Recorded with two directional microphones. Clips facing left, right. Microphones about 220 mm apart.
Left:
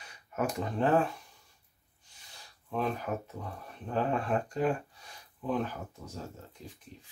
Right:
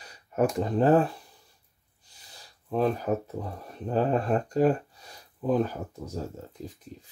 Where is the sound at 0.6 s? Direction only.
35° right (ahead or behind).